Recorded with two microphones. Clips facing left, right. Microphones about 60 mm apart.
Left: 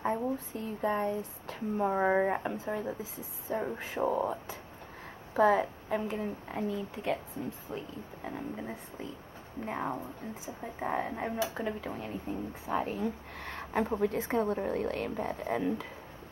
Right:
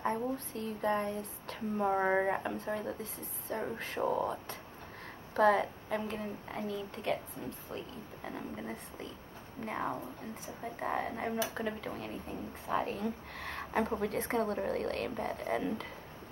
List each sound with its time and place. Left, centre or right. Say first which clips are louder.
0.0 s a woman's voice: left 2 dB; centre